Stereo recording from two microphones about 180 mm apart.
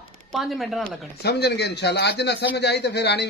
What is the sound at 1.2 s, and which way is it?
Speech, 65° left (ahead or behind).